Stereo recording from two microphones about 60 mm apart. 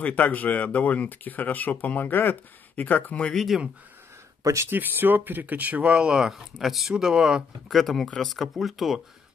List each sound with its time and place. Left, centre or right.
0.0 s speech: left
3.3 s speech: centre
4.4 s speech: right
4.6 s speech: right; by 7.4 s centre
7.6 s speech: centre